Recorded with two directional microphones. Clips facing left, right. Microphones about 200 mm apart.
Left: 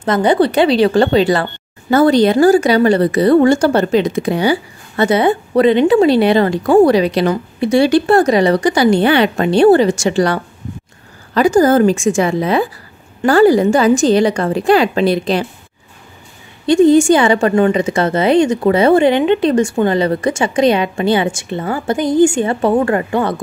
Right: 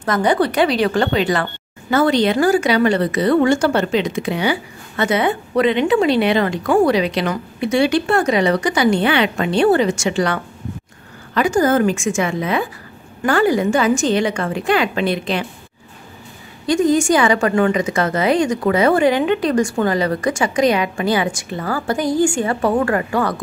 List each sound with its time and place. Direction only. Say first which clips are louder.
0.0 s a woman's voice: left 4 dB; 25° left (ahead or behind)
16.6 s a woman's voice: left 6 dB; 30° left (ahead or behind)